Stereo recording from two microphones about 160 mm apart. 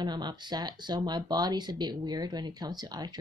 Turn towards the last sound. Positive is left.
turn(degrees=-25)  # may be behind; listen again after turning